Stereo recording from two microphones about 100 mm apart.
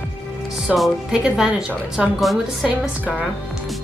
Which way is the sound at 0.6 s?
Centre (ahead or behind).